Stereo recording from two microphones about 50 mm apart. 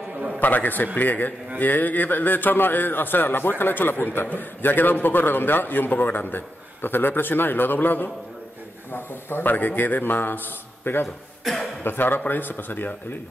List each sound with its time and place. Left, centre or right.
0.4 s a man's voice: left